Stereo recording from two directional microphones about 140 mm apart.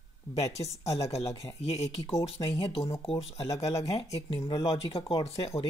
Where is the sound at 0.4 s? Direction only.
50° left (ahead or behind).